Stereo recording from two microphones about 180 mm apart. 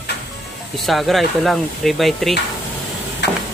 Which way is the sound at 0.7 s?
Centre (ahead or behind).